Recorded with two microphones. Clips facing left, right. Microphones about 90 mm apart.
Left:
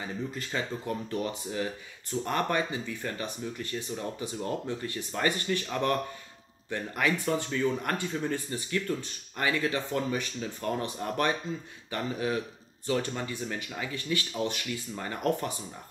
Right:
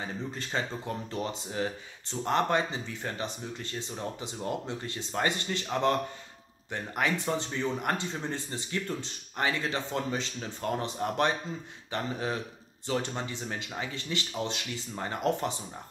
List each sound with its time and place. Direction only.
0.0 s speech: 30° right (ahead or behind)